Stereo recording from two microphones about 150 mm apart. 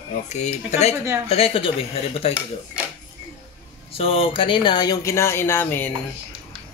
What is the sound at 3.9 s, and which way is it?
Speech, 40° left (ahead or behind).